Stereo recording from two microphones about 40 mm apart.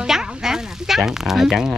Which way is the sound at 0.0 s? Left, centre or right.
Centre.